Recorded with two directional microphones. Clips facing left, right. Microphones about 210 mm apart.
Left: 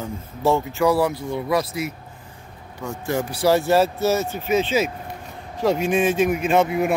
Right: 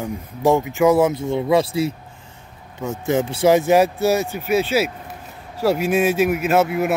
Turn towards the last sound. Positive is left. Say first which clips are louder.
# right 1 dB
turn(degrees=-5)  # may be behind; listen again after turning